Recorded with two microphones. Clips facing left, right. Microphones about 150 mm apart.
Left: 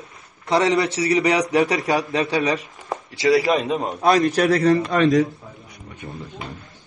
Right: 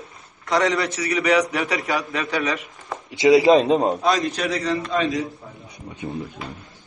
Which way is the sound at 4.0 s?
60° left (ahead or behind).